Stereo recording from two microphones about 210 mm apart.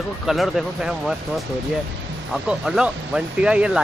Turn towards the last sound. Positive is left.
turn(degrees=-5)  # may be behind; listen again after turning